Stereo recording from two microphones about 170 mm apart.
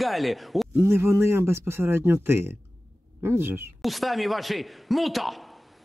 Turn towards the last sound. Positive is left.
turn(degrees=0)  # may be behind; listen again after turning